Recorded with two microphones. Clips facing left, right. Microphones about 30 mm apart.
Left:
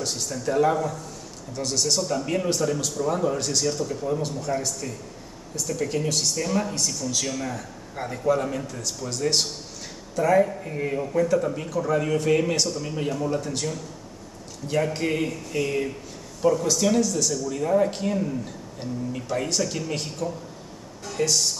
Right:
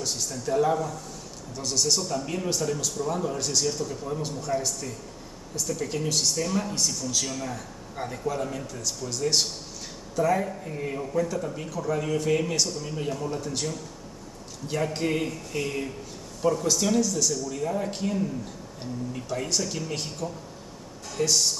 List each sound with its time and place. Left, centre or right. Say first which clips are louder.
0.0 s a man's voice: left 3 dB; centre
1.6 s a man's voice: left 2 dB; centre
2.0 s a man's voice: left 4 dB; centre
3.4 s a man's voice: left 2 dB; centre
7.2 s a man's voice: left 3 dB; centre
14.7 s a man's voice: left 3 dB; centre
19.3 s a man's voice: left 3 dB; centre
21.2 s speech: left 1 dB; centre